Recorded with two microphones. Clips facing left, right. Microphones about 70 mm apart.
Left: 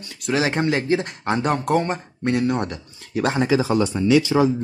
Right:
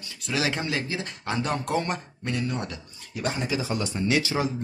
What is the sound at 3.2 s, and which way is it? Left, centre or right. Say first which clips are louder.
Speech: left 9 dB; left.